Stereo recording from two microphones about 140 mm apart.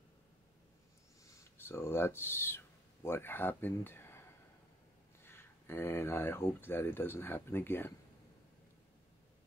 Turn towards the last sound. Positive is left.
turn(degrees=15)  # may be behind; listen again after turning